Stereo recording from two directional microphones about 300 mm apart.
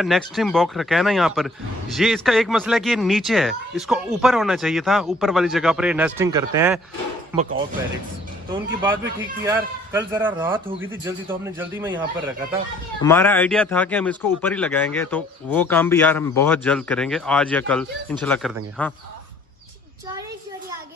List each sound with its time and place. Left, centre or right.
0.0 s speech: centre
7.3 s speech: right
9.4 s a man's voice: centre
13.0 s speech: centre